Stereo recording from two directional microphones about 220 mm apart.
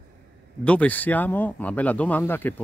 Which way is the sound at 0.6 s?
5° left (ahead or behind).